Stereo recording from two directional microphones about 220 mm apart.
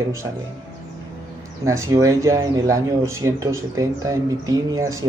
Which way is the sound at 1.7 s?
15° right (ahead or behind).